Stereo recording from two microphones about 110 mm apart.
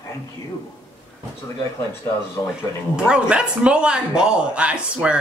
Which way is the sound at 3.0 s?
10° right (ahead or behind).